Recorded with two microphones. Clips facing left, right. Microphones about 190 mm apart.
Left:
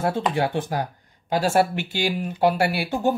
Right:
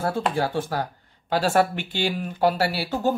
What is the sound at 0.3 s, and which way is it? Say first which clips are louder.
Speech: left 1 dB; 20° left (ahead or behind).